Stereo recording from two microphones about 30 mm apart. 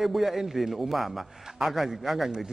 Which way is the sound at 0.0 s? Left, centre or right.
Centre.